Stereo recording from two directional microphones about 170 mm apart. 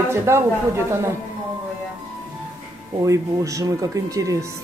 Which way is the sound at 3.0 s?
20° right (ahead or behind).